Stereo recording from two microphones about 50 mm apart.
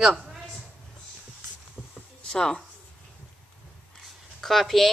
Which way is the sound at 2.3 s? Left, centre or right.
Centre.